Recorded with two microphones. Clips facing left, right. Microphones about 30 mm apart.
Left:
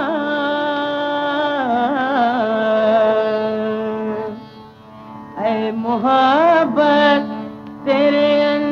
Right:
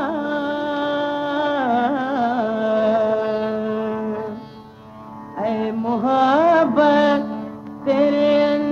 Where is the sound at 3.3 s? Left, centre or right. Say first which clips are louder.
Left 3 dB; left.